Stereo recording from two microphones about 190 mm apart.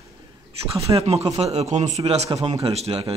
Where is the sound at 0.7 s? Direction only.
30° right (ahead or behind).